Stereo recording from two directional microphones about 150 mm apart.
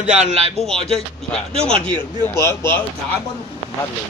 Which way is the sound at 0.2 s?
45° right (ahead or behind).